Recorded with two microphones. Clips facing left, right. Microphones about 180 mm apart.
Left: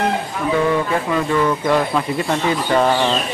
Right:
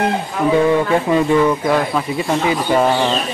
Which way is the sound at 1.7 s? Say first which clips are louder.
Even; 5° right (ahead or behind).